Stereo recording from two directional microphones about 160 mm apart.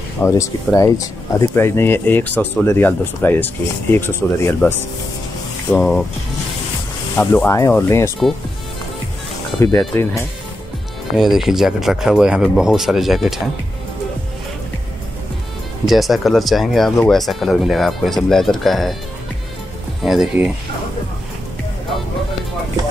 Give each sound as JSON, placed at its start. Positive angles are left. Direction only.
{"t": 0.2, "sound": "speech", "side_deg": 20}
{"t": 5.7, "sound": "speech", "side_deg": 5}
{"t": 7.2, "sound": "speech", "side_deg": 15}
{"t": 9.6, "sound": "speech", "side_deg": 15}
{"t": 11.1, "sound": "speech", "side_deg": 0}
{"t": 15.8, "sound": "speech", "side_deg": 0}
{"t": 20.0, "sound": "speech", "side_deg": 0}